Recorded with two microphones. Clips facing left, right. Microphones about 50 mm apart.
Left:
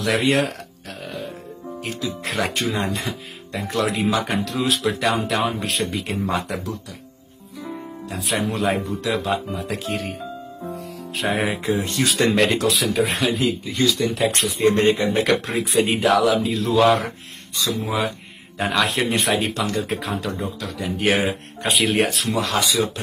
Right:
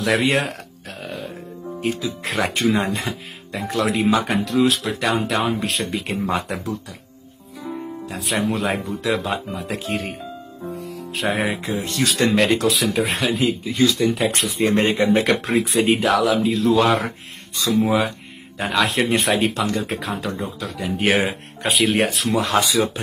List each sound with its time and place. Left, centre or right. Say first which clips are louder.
0.0 s music: even; centre
1.8 s speech: right 6 dB; centre
2.0 s speech: right 1 dB; centre
8.1 s speech: right 1 dB; centre
10.7 s music: right 3 dB; centre
11.8 s speech: even; left
12.2 s speech: right 1 dB; centre
17.6 s speech: right 5 dB; right
17.8 s speech: right 4 dB; centre
22.4 s speech: right 3 dB; right